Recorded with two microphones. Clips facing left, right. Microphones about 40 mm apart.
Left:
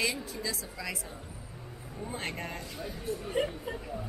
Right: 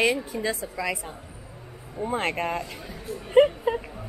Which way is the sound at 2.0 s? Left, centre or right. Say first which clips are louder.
Right 11 dB; right.